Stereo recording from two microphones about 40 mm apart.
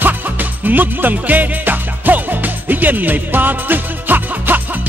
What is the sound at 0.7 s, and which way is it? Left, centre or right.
Music, right.